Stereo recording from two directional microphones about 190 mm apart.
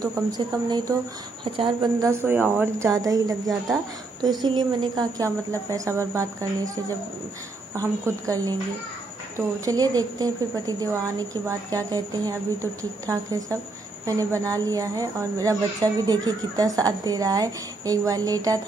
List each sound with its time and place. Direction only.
0.0 s speech: 20° right (ahead or behind)